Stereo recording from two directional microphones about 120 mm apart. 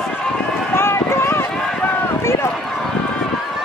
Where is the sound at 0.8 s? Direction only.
20° left (ahead or behind).